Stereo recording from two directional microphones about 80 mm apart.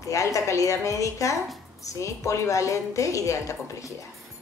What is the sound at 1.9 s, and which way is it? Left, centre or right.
A woman's voice, left.